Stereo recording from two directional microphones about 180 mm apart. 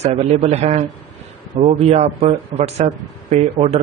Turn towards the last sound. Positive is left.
turn(degrees=-35)  # may be behind; listen again after turning